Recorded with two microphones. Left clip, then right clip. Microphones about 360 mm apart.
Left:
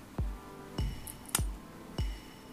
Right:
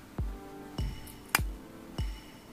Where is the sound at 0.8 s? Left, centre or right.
Centre.